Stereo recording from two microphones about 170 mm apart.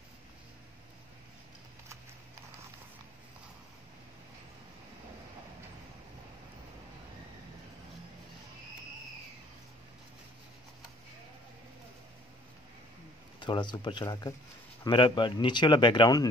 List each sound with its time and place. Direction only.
13.4 s speech: 25° left (ahead or behind)